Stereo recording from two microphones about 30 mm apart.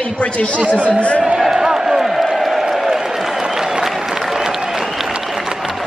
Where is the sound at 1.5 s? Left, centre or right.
Centre.